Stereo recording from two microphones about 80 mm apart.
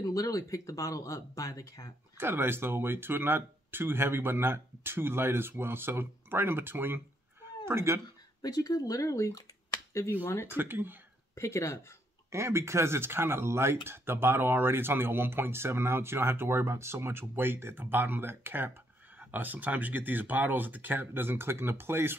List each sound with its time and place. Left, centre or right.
0.0 s speech: left
2.1 s speech: right
8.4 s speech: left
10.2 s speech: left
10.5 s speech: right
11.3 s speech: left
12.3 s speech: right